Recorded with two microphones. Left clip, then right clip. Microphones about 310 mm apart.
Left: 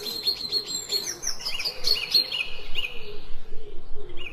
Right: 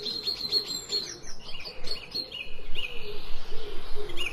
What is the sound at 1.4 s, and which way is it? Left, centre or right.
Chirp, left.